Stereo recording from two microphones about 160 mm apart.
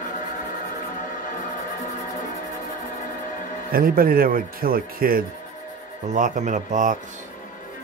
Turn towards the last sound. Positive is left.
turn(degrees=-50)  # may be behind; listen again after turning